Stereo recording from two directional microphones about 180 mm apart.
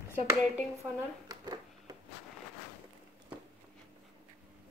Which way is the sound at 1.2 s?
20° right (ahead or behind).